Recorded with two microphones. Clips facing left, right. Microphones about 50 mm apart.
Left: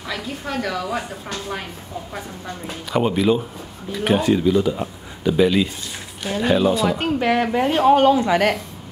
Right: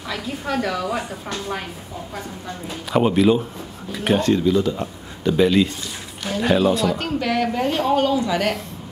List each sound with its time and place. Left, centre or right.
0.1 s a woman's voice: centre
2.9 s a woman's voice: centre
6.9 s a woman's voice: left